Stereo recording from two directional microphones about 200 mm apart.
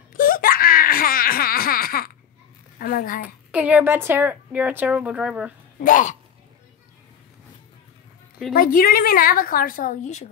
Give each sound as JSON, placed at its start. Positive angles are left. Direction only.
{"t": 0.1, "sound": "baby cry", "side_deg": 45}
{"t": 2.8, "sound": "a woman's voice", "side_deg": 45}
{"t": 3.2, "sound": "a woman's voice", "side_deg": -5}
{"t": 5.8, "sound": "speech", "side_deg": 40}
{"t": 8.5, "sound": "a woman's voice", "side_deg": 45}